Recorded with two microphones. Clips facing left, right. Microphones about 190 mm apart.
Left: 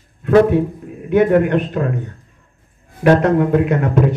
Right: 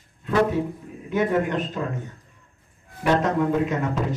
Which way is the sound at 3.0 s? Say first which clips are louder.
Left 8 dB; 60° left (ahead or behind).